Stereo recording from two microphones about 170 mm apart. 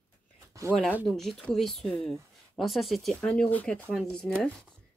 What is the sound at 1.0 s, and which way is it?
A woman's voice, centre (ahead or behind).